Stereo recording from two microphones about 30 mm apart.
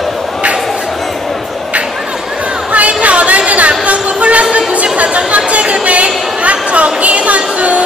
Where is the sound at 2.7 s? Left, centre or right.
Right.